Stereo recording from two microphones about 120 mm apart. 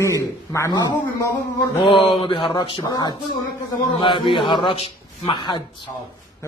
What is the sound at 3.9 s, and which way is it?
A man's voice, 45° left (ahead or behind).